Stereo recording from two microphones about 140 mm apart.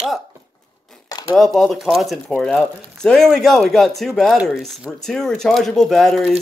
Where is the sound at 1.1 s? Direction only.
25° left (ahead or behind).